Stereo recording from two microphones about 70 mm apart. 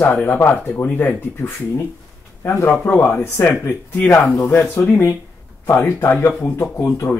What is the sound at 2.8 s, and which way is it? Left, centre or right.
Speech, left.